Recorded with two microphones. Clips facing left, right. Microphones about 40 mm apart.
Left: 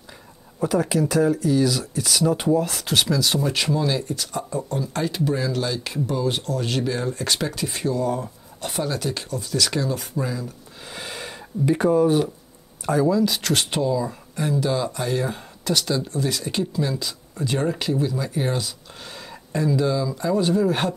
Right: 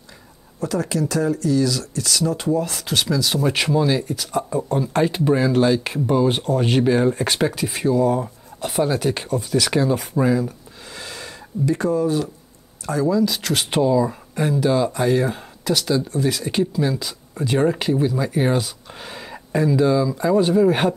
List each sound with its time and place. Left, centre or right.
0.6 s speech: centre
3.4 s speech: centre
4.7 s speech: right
7.5 s speech: centre; by 10.5 s right
10.9 s gasp: centre
11.7 s speech: centre
13.1 s speech: centre
13.7 s speech: centre